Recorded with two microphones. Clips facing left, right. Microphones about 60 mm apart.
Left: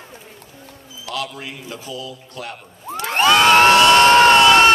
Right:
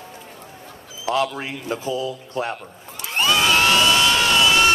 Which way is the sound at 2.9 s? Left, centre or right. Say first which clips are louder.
Left 6 dB; left.